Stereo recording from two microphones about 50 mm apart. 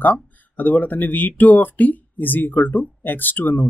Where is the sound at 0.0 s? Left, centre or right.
Left.